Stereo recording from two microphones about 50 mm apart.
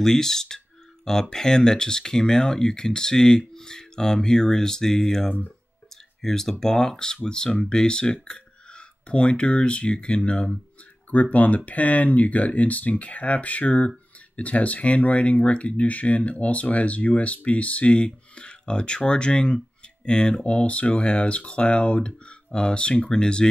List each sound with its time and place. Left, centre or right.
0.0 s speech: centre
6.2 s speech: centre